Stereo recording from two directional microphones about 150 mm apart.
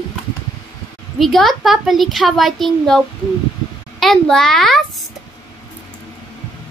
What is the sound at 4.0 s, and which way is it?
Speech, centre (ahead or behind).